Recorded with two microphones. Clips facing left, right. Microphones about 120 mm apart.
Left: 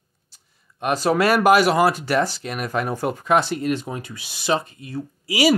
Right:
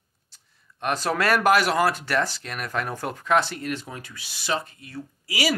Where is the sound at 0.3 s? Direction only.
10° left (ahead or behind).